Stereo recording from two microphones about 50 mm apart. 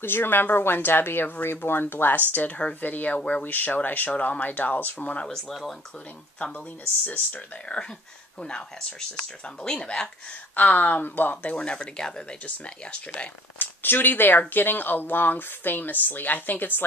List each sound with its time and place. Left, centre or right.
0.0 s speech: left
3.2 s speech: centre
3.4 s speech: left
5.5 s speech: centre
8.4 s speech: centre
10.5 s speech: left
11.4 s speech: centre
13.6 s speech: left